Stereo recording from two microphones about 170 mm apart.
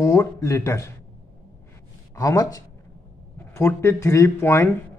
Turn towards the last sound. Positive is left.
turn(degrees=15)  # may be behind; listen again after turning